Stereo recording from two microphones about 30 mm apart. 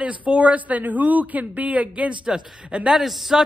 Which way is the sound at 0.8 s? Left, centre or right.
Right.